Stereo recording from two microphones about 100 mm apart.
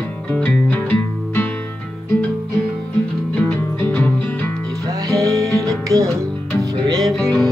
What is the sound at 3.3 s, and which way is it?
Music, 15° left (ahead or behind).